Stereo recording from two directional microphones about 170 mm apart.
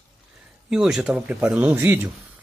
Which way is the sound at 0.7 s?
5° right (ahead or behind).